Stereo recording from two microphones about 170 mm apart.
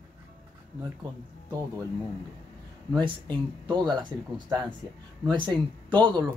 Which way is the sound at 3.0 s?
25° right (ahead or behind).